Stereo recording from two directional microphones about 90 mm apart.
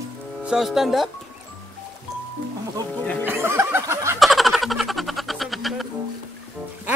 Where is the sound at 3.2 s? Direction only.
25° right (ahead or behind).